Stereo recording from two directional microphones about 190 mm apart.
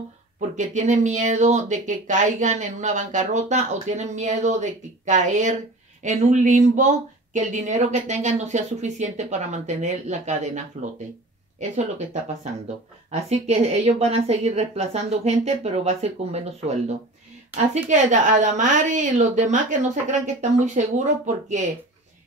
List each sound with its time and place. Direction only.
0.4 s speech: 40° right (ahead or behind)
17.8 s speech: 40° right (ahead or behind)